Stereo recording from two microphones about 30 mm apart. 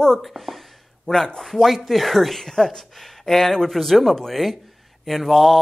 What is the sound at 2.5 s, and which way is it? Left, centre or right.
Speech, left.